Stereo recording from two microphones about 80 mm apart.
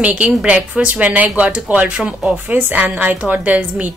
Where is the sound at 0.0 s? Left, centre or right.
Centre.